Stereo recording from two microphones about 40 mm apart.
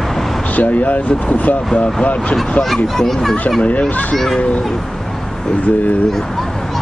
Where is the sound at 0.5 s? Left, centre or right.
Left.